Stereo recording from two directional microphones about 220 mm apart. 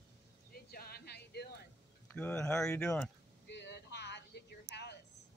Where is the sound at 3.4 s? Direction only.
50° left (ahead or behind).